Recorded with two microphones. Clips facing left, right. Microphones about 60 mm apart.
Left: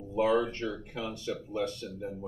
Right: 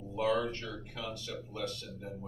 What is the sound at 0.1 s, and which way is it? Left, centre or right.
Speech, left.